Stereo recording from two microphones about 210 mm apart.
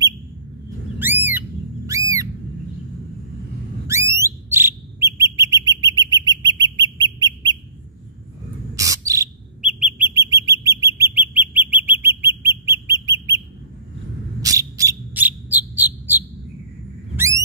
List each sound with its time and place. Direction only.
0.9 s bird: 10° right (ahead or behind)
1.9 s a sound: 15° right (ahead or behind)
3.8 s bird: 15° right (ahead or behind)
8.7 s bird: 15° right (ahead or behind)
9.6 s bird: 5° right (ahead or behind)
14.4 s bird: 15° right (ahead or behind)